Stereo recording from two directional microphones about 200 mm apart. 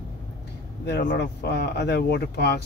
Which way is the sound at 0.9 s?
55° left (ahead or behind).